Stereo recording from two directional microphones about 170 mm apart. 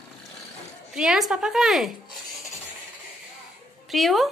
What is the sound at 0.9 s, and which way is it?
Speech, 5° right (ahead or behind).